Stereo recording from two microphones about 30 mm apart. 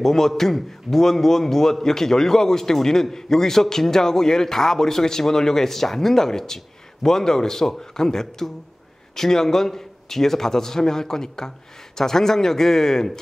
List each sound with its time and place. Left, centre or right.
0.0 s a man's voice: centre